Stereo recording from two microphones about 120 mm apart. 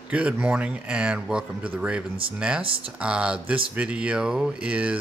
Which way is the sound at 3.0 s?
10° right (ahead or behind).